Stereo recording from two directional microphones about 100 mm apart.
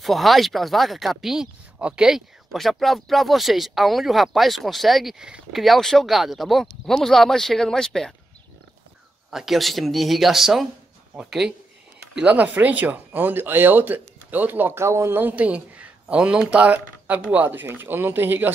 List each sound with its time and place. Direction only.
0.0 s speech: centre (ahead or behind)
9.3 s speech: 5° right (ahead or behind); by 18.5 s 20° right (ahead or behind)